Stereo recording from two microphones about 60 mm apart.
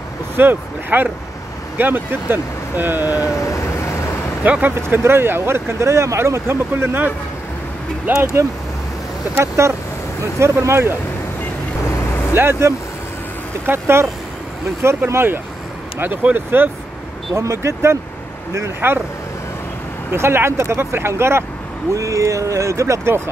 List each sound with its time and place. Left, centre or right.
0.4 s speech: right
3.3 s vehicle: left
4.4 s speech: right
4.8 s speech: right
8.1 s speech: right
9.3 s speech: right
12.4 s speech: right
15.0 s speech: right
16.0 s speech: right
17.4 s speech: right
18.8 s speech: right
20.1 s speech: right
21.9 s speech: right